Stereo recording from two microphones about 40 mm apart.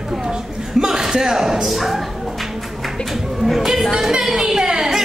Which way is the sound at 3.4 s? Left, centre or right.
Centre.